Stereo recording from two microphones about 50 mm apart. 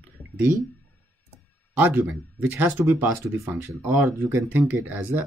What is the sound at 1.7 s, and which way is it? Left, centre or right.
Speech, right.